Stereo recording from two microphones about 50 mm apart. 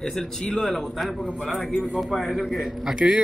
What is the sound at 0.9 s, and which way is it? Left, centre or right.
A man's voice, centre.